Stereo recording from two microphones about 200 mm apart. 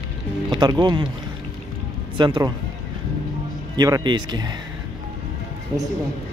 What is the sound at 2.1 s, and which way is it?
Speech, 25° right (ahead or behind).